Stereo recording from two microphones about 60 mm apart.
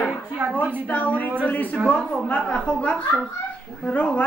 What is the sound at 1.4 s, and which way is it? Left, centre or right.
A woman's voice, left.